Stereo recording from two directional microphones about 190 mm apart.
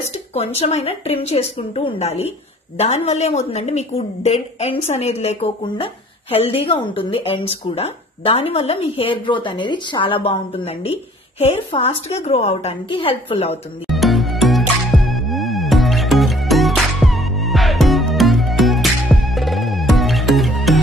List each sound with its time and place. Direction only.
0.1 s speech: 35° left (ahead or behind)
13.8 s music: centre (ahead or behind)